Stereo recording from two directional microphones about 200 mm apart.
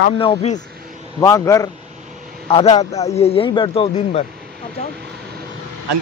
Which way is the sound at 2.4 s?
30° left (ahead or behind).